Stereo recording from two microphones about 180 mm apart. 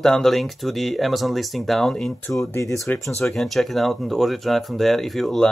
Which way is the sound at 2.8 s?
Centre (ahead or behind).